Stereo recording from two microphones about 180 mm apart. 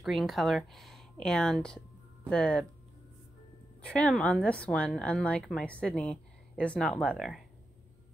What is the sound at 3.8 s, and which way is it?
A woman's voice, 5° left (ahead or behind).